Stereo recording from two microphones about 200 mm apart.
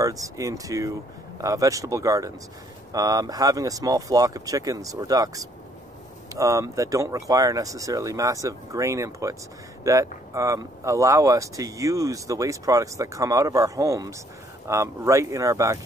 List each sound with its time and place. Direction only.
0.0 s speech: 15° right (ahead or behind)